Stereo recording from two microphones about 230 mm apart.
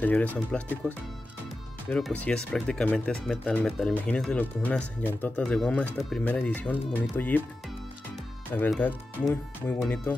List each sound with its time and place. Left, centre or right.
0.0 s speech: centre
8.5 s speech: centre